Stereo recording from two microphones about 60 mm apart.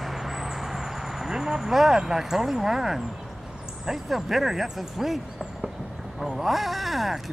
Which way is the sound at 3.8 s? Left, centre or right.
Centre.